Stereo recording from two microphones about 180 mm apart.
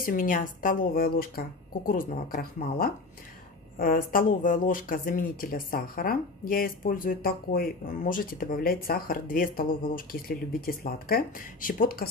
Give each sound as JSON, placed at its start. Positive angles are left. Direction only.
{"t": 0.0, "sound": "speech", "side_deg": 50}